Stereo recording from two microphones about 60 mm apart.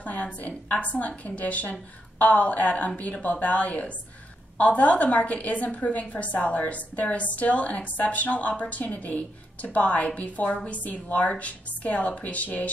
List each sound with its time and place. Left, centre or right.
0.0 s a woman's voice: left